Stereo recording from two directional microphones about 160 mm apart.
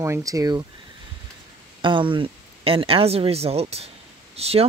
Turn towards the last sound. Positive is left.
turn(degrees=-40)  # may be behind; listen again after turning